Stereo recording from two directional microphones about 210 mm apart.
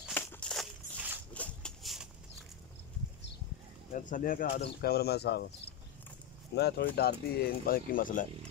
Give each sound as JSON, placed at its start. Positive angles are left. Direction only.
{"t": 0.1, "sound": "a sound", "side_deg": 10}
{"t": 3.9, "sound": "speech", "side_deg": 40}
{"t": 6.5, "sound": "speech", "side_deg": 50}